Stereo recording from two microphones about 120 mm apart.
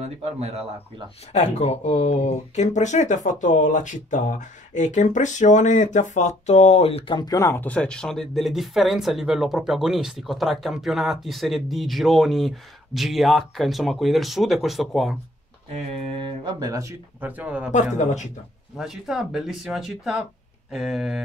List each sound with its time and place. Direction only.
0.2 s speech: 60° right (ahead or behind)
1.3 s speech: 65° left (ahead or behind)
3.3 s speech: 90° left; by 7.2 s 55° left (ahead or behind)
7.2 s speech: 30° left (ahead or behind); by 15.1 s centre (ahead or behind)
15.7 s speech: 45° right (ahead or behind); by 16.9 s 30° right (ahead or behind)
17.2 s speech: 15° right (ahead or behind)
17.9 s speech: 80° left
18.8 s speech: 5° right (ahead or behind)